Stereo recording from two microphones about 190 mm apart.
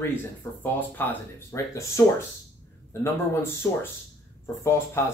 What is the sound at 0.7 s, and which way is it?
Speech, 10° left (ahead or behind).